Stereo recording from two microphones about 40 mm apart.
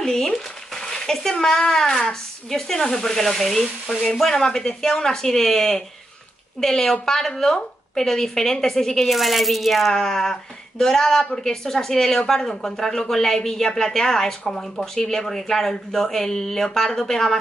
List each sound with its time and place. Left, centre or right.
0.0 s a sound: centre
1.6 s speech: centre
9.1 s speech: centre
9.9 s speech: centre